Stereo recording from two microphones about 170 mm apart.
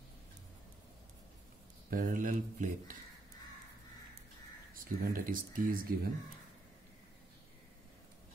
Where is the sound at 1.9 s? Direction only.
50° right (ahead or behind).